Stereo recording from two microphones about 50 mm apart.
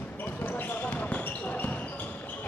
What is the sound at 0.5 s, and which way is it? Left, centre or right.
Basketball bounce, left.